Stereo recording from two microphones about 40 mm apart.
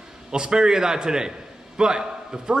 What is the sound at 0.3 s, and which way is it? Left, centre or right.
A man's voice, centre.